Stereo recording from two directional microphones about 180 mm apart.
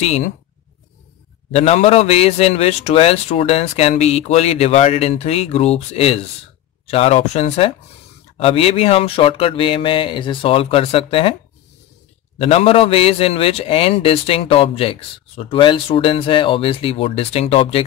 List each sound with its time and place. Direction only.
0.0 s a man's voice: 35° left (ahead or behind)
1.5 s a man's voice: 35° left (ahead or behind)
12.4 s a man's voice: 35° left (ahead or behind)